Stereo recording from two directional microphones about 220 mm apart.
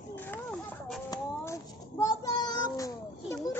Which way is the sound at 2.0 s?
15° left (ahead or behind).